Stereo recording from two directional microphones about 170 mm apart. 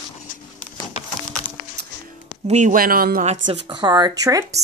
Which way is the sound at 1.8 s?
75° right (ahead or behind).